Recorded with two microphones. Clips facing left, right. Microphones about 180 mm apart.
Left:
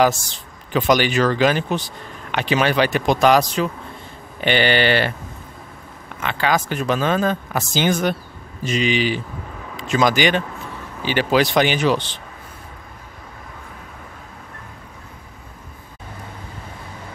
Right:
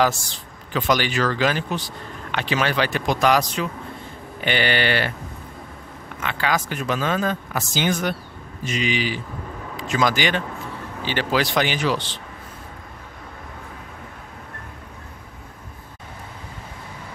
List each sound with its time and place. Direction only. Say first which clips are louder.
0.0 s speech: left 3 dB; 20° left (ahead or behind)
6.2 s speech: left 3 dB; 30° left (ahead or behind)